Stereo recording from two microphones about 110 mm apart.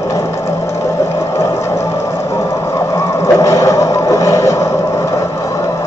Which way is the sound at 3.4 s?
30° left (ahead or behind).